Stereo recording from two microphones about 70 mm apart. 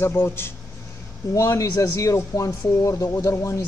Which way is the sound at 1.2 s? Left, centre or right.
Left.